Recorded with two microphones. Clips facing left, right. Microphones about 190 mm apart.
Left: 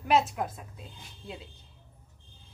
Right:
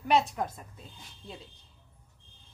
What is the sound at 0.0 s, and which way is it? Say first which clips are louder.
A woman's voice: left 1 dB; centre (ahead or behind).